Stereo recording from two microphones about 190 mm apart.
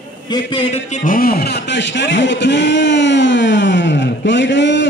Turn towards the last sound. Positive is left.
turn(degrees=70)  # may be behind; listen again after turning